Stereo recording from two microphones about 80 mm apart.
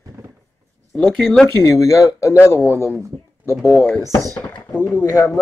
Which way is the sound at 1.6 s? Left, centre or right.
Left.